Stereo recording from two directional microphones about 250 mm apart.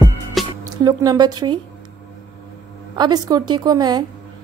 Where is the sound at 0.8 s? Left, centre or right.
Centre.